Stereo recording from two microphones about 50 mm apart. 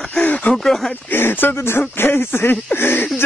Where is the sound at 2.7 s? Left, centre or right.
Left.